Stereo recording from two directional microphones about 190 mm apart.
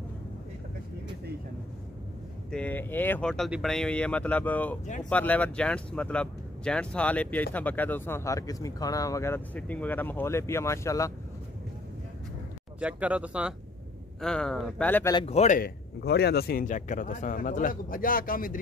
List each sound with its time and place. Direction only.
2.5 s speech: 10° left (ahead or behind)
12.8 s a man's voice: 5° right (ahead or behind); by 15.1 s 10° left (ahead or behind)
15.1 s speech: 35° left (ahead or behind)